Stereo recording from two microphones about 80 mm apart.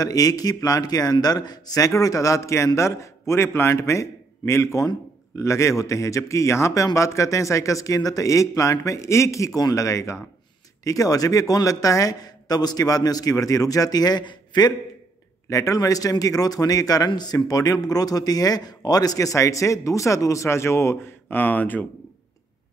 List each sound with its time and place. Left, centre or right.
0.0 s speech: left
15.5 s speech: left